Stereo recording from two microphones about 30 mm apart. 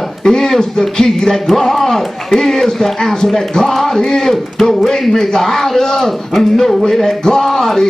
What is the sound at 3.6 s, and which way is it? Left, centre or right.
Music, left.